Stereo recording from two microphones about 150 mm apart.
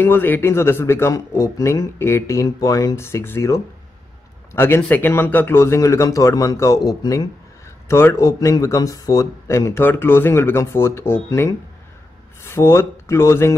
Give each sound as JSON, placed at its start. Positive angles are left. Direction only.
{"t": 0.0, "sound": "speech", "side_deg": 15}